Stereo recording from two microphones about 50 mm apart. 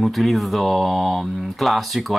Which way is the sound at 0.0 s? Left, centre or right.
Centre.